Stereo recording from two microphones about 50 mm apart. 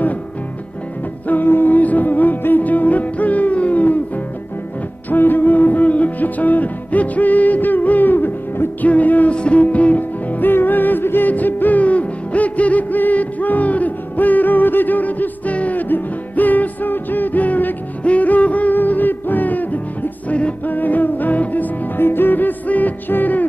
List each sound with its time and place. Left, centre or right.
1.2 s music: left
5.1 s music: left
8.8 s music: left
22.0 s music: left